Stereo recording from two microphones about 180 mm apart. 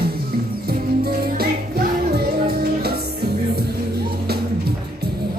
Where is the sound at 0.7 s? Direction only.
60° right (ahead or behind).